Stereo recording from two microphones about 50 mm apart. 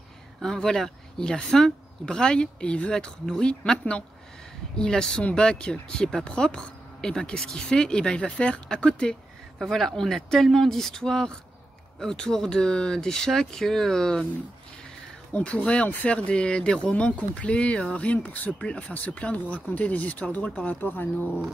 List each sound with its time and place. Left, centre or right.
0.4 s speech: centre
9.6 s speech: centre
15.3 s speech: left
16.9 s speech: left